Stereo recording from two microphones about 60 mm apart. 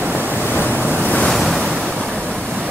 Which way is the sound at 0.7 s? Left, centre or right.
Right.